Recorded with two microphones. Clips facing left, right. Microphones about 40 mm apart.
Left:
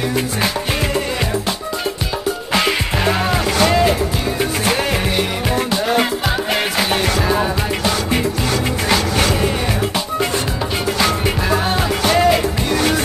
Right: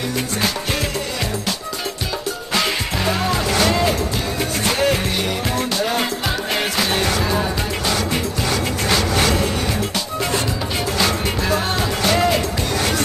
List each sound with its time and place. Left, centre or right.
0.1 s music: centre
2.5 s music: centre
11.4 s music: centre